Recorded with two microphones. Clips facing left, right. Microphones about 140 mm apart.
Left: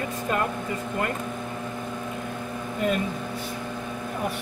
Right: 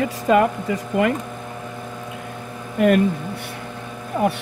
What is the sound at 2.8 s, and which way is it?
Speech, 75° right (ahead or behind).